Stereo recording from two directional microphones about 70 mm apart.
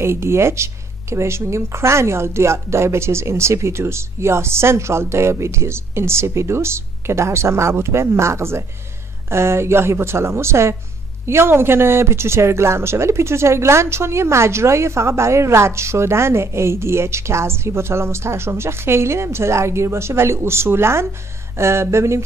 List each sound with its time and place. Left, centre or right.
0.0 s speech: right